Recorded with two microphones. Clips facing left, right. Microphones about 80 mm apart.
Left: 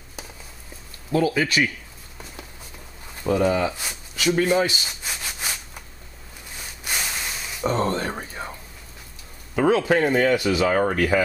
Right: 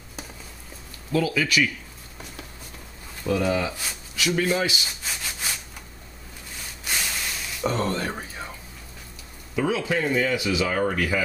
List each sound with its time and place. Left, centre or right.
1.1 s speech: left
3.3 s speech: left
4.8 s rub: centre
6.8 s a sound: centre
7.7 s speech: left
8.4 s a sound: left
9.6 s speech: left